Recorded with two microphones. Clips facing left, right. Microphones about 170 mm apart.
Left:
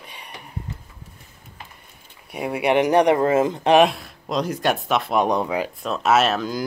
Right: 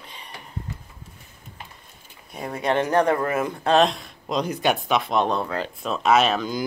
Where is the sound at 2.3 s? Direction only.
10° left (ahead or behind).